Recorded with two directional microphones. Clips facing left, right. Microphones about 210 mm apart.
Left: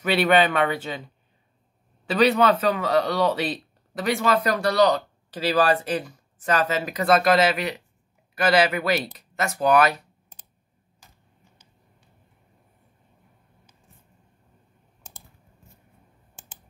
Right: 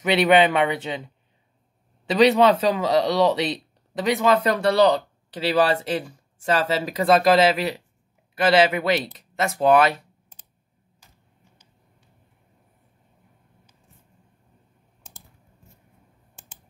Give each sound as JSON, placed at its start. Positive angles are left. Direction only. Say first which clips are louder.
{"t": 0.0, "sound": "a man's voice", "louder": "right 2 dB", "side_deg": -20}